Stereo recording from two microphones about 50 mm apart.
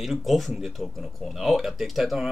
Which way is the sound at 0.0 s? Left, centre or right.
Centre.